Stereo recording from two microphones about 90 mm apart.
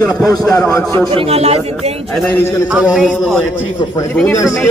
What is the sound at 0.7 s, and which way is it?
Speech, 35° left (ahead or behind).